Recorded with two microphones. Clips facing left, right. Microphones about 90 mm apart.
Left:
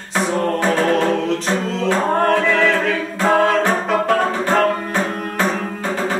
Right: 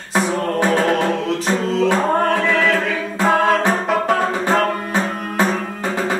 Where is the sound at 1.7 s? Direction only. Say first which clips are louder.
Right 2 dB; centre (ahead or behind).